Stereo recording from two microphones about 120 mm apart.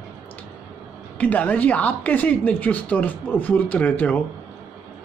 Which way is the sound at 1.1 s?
15° left (ahead or behind).